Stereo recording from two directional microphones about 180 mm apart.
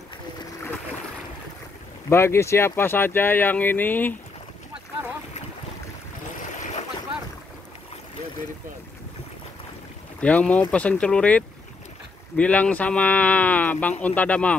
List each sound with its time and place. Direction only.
2.0 s speech: 15° left (ahead or behind)
6.4 s boat: 45° left (ahead or behind)
10.2 s speech: 10° left (ahead or behind)